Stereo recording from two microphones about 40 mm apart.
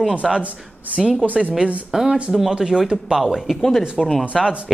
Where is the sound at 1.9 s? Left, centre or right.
Centre.